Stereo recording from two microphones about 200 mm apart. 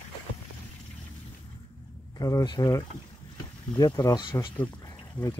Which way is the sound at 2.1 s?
20° left (ahead or behind).